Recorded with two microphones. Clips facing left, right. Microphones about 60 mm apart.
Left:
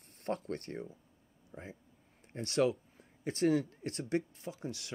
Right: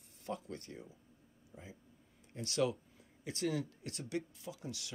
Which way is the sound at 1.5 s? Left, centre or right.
Left.